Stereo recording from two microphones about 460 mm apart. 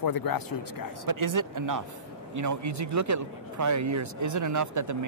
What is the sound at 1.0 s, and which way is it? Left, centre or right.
A man's voice, right.